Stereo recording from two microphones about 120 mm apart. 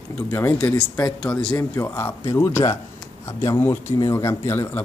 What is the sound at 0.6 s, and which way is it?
Speech, 10° left (ahead or behind).